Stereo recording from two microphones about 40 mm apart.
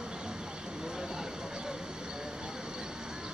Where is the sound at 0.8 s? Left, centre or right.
Centre.